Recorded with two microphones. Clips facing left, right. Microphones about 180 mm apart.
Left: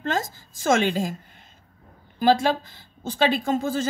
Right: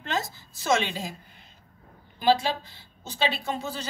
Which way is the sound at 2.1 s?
50° left (ahead or behind).